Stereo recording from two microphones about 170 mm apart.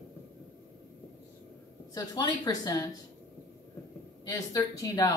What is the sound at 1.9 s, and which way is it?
Speech, 20° left (ahead or behind).